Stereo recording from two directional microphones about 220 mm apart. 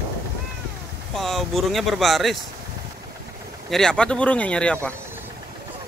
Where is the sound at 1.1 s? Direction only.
Centre (ahead or behind).